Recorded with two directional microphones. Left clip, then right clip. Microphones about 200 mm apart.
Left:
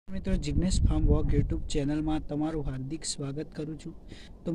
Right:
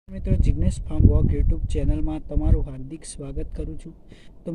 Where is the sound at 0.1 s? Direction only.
5° right (ahead or behind).